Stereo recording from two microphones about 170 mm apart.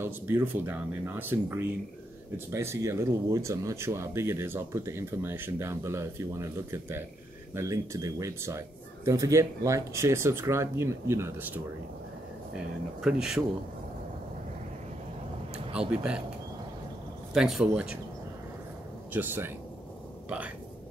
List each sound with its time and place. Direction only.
0.0 s speech: 15° right (ahead or behind)
15.7 s speech: 5° right (ahead or behind)
17.3 s speech: centre (ahead or behind)
19.1 s speech: 10° right (ahead or behind)